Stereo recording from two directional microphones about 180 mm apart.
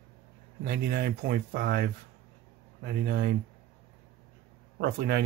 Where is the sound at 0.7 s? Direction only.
60° right (ahead or behind).